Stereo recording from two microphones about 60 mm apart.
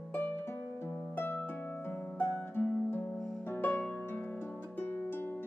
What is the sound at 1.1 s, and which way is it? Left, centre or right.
Harp, left.